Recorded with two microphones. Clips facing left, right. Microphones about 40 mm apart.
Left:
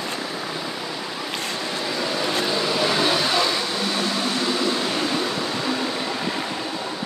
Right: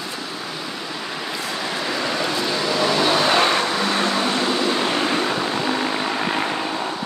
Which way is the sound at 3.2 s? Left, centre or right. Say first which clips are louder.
Right 4 dB; right.